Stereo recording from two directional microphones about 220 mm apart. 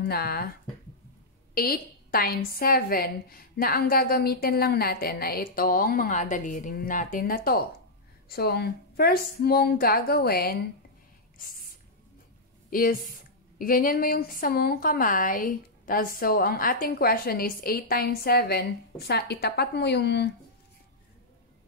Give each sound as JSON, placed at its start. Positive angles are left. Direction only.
{"t": 0.0, "sound": "a woman's voice", "side_deg": 45}
{"t": 1.5, "sound": "a woman's voice", "side_deg": 40}
{"t": 11.3, "sound": "a sound", "side_deg": 40}
{"t": 12.6, "sound": "a woman's voice", "side_deg": 40}